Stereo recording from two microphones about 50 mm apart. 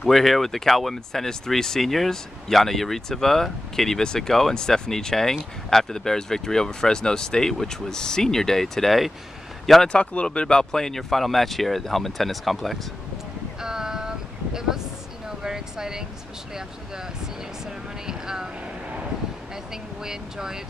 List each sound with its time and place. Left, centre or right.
0.1 s speech: centre
9.9 s speech: left; by 12.8 s centre
13.6 s a sound: centre
18.0 s vehicle: centre
19.5 s vehicle: centre